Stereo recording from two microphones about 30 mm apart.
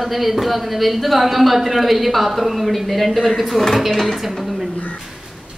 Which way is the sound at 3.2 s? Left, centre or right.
Centre.